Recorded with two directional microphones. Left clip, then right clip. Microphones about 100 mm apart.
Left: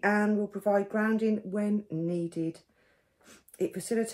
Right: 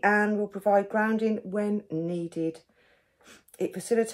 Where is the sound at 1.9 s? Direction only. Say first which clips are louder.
Right 1 dB; 25° right (ahead or behind).